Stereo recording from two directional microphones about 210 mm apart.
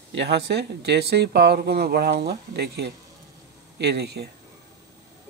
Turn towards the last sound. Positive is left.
turn(degrees=-50)  # may be behind; listen again after turning